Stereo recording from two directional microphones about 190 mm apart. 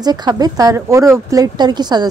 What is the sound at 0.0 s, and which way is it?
A woman's voice, 20° right (ahead or behind).